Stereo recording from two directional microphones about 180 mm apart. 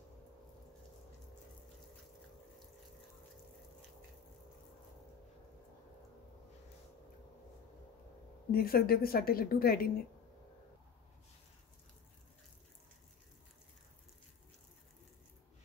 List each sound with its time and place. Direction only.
8.5 s a woman's voice: 55° left (ahead or behind)